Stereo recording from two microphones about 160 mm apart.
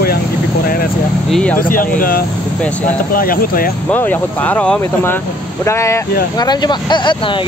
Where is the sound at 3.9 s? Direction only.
10° left (ahead or behind).